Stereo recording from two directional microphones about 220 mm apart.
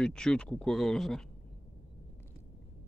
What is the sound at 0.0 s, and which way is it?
Speech, 5° left (ahead or behind).